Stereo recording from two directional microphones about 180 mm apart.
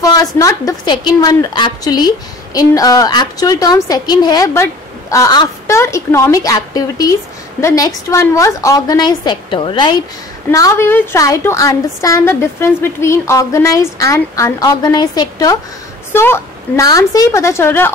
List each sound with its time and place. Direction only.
0.0 s a woman's voice: 20° left (ahead or behind)
10.5 s a woman's voice: 15° left (ahead or behind)